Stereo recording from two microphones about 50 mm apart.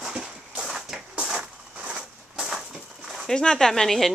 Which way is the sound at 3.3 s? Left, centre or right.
Centre.